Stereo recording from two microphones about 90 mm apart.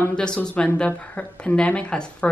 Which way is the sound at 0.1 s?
10° left (ahead or behind).